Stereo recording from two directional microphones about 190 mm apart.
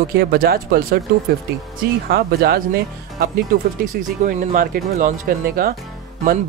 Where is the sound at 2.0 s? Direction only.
55° right (ahead or behind).